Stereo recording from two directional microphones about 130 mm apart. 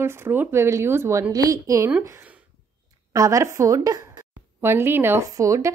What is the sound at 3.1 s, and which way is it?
A woman's voice, 25° right (ahead or behind).